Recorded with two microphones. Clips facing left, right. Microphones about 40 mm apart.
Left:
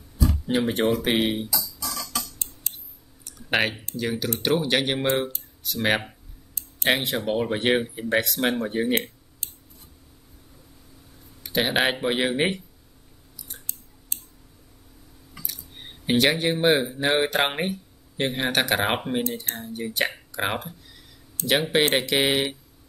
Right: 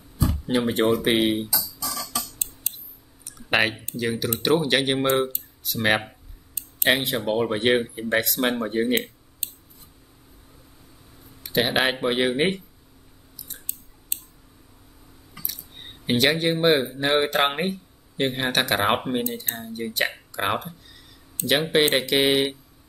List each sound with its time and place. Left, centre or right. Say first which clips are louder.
0.5 s speech: right 2 dB; centre
3.3 s clicking: right 2 dB; centre
3.9 s speech: right 1 dB; centre
9.4 s scissors: right 2 dB; right
11.4 s speech: right 1 dB; centre
13.7 s scissors: right 1 dB; right
15.4 s speech: even; centre